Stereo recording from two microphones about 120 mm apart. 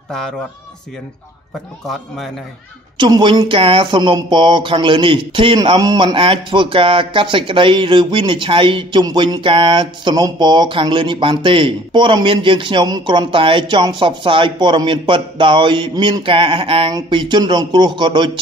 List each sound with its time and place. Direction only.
3.0 s speech: 40° right (ahead or behind)
6.1 s speech: 45° right (ahead or behind)